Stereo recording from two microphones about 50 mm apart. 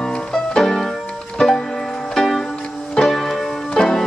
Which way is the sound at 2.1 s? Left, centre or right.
Centre.